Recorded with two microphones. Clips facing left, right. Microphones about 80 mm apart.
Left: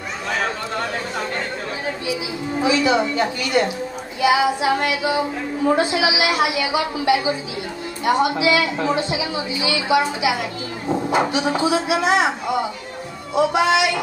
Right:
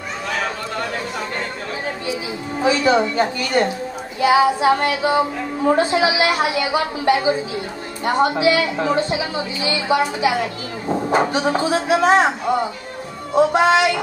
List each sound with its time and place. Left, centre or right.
2.6 s a woman's voice: right
13.3 s a woman's voice: right